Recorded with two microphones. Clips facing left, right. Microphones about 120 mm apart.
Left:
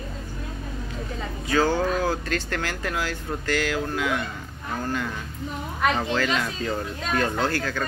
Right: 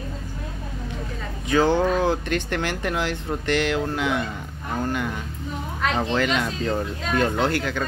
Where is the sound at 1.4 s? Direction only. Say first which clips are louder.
Right 3 dB; 20° right (ahead or behind).